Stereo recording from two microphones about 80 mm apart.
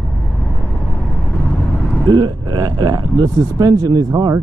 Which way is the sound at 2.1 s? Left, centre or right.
Right.